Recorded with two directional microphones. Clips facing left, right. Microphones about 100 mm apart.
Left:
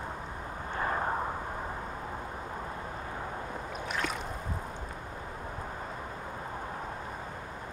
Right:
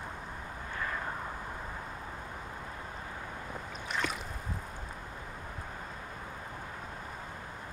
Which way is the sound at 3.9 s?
Centre (ahead or behind).